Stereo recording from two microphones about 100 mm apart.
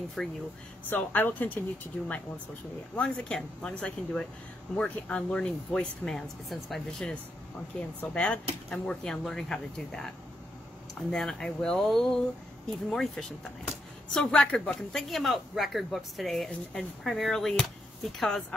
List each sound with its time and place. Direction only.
0.2 s speech: 5° left (ahead or behind)
0.8 s speech: 20° left (ahead or behind)
3.0 s speech: 10° left (ahead or behind)